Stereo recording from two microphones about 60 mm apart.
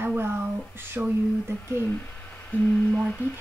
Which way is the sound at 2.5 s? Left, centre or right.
Left.